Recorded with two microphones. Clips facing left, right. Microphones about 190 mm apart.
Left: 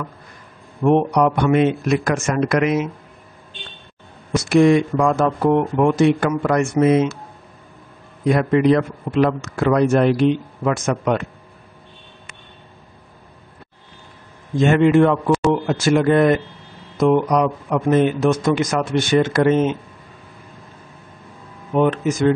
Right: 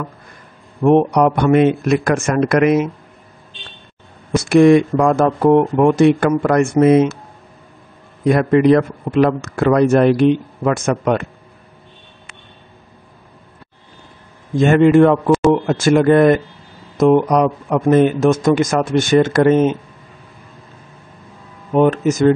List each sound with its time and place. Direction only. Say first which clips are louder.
0.8 s speech: right 3 dB; 50° right (ahead or behind)
4.5 s speech: right 4 dB; 55° right (ahead or behind)
8.3 s speech: right 3 dB; 50° right (ahead or behind)
14.6 s speech: right 3 dB; 50° right (ahead or behind)
21.7 s speech: right 4 dB; 45° right (ahead or behind)